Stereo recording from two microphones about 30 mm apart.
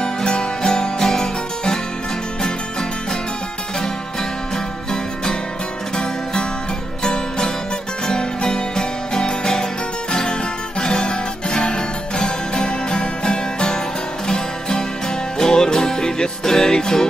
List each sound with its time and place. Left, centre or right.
0.0 s music: left
7.0 s music: left
10.8 s guitar: left
14.2 s music: centre